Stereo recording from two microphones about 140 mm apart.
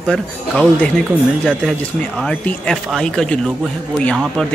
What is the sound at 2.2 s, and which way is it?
Speech, 5° left (ahead or behind).